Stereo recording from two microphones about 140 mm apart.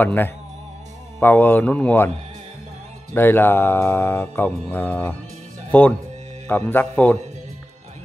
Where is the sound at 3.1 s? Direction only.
15° left (ahead or behind).